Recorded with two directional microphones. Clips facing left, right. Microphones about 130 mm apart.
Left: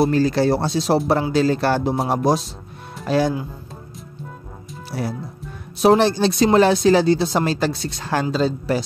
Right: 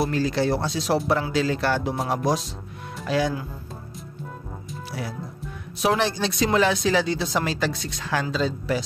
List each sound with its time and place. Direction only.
0.0 s speech: 40° left (ahead or behind)
5.8 s speech: 35° left (ahead or behind)